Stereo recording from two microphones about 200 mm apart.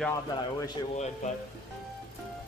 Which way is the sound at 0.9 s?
35° left (ahead or behind).